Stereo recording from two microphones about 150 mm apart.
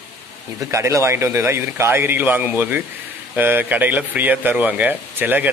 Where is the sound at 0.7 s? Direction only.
20° right (ahead or behind).